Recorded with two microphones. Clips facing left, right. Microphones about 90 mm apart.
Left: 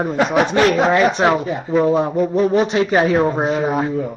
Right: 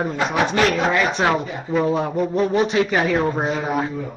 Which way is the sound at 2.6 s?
30° left (ahead or behind).